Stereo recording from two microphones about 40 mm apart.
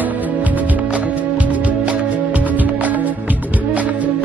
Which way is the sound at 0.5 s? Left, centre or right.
Right.